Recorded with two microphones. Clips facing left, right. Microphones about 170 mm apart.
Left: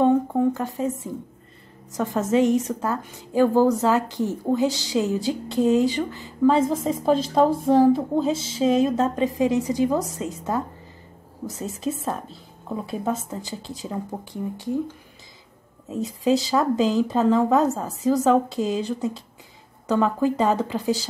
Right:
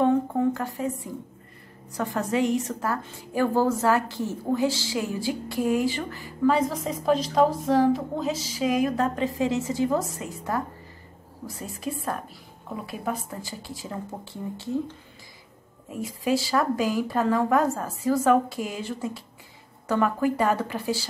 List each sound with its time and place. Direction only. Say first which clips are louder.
0.6 s a woman's voice: left 3 dB; 20° left (ahead or behind)